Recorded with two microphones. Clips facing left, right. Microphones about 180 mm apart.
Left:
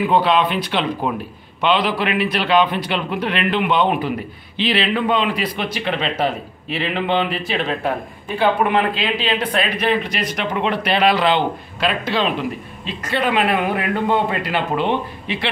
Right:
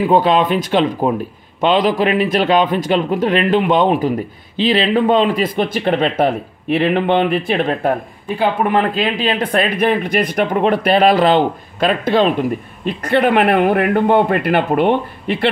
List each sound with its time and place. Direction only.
0.0 s speech: 45° right (ahead or behind)